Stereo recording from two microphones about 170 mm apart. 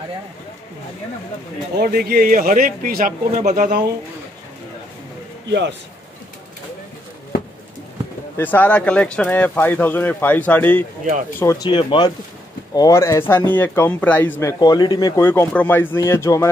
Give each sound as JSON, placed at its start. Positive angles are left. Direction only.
{"t": 1.8, "sound": "a man's voice", "side_deg": -65}
{"t": 5.5, "sound": "a man's voice", "side_deg": -90}
{"t": 8.4, "sound": "speech", "side_deg": 10}
{"t": 14.6, "sound": "speech", "side_deg": 25}
{"t": 15.2, "sound": "speech", "side_deg": 15}